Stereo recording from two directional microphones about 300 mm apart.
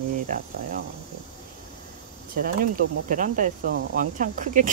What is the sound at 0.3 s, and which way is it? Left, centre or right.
Speech, right.